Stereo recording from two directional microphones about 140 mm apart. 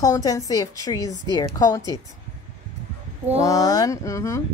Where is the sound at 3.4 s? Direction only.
25° left (ahead or behind).